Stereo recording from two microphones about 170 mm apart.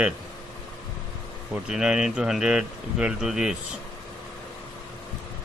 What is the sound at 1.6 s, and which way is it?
Speech, 5° right (ahead or behind).